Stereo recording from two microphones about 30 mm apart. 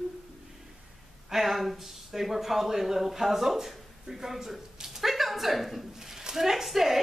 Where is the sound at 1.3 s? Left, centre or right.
Centre.